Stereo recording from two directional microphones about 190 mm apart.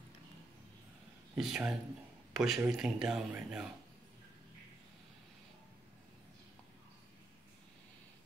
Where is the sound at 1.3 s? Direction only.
5° right (ahead or behind).